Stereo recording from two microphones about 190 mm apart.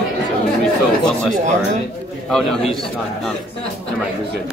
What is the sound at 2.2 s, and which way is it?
Speech, centre (ahead or behind).